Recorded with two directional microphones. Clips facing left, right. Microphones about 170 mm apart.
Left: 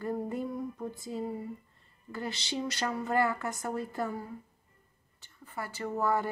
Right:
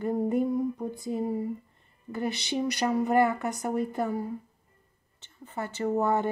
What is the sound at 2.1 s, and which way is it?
Speech, 20° right (ahead or behind).